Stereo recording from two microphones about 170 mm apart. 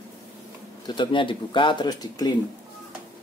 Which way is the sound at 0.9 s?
30° left (ahead or behind).